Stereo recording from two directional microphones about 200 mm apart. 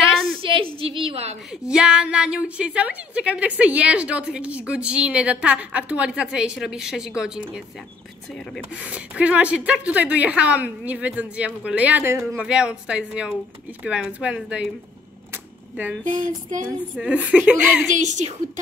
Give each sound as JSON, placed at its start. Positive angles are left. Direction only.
{"t": 0.4, "sound": "a sound", "side_deg": -25}
{"t": 0.7, "sound": "a woman's voice", "side_deg": -25}
{"t": 1.5, "sound": "a woman's voice", "side_deg": -5}
{"t": 8.7, "sound": "a woman's voice", "side_deg": -5}
{"t": 15.3, "sound": "camera", "side_deg": -5}
{"t": 16.9, "sound": "speech", "side_deg": -5}
{"t": 17.9, "sound": "a woman's voice", "side_deg": -35}